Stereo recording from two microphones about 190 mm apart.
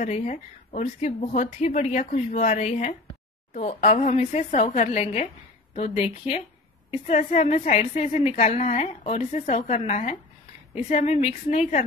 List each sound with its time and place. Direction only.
0.0 s a woman's voice: 40° left (ahead or behind)